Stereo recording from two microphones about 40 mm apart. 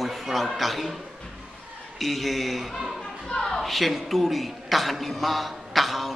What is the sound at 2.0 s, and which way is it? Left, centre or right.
Speech, centre.